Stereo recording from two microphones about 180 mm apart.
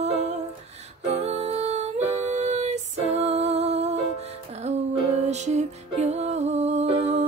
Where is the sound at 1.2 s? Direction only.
35° right (ahead or behind).